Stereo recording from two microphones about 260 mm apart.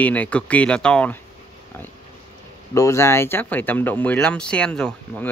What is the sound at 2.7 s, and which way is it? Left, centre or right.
Speech, centre.